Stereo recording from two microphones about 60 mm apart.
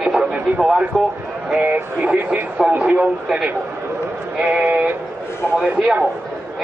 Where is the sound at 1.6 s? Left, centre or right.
Right.